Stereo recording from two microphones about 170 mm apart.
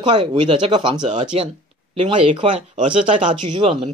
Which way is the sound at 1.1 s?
40° right (ahead or behind).